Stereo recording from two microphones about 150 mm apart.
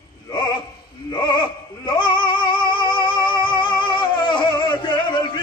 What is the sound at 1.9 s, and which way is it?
Music, 30° left (ahead or behind).